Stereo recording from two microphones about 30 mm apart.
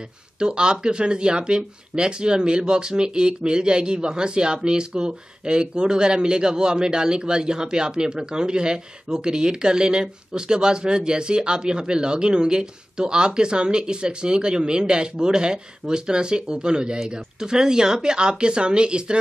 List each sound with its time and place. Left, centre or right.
0.4 s speech: right